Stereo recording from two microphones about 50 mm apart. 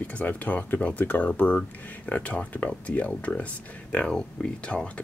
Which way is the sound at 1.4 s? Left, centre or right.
Left.